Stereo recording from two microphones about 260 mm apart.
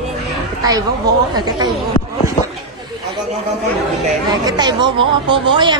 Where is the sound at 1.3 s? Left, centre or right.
Centre.